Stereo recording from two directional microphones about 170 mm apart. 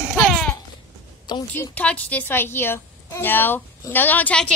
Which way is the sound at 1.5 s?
10° left (ahead or behind).